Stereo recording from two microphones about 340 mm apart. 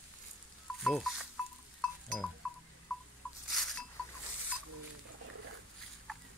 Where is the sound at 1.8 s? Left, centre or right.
Centre.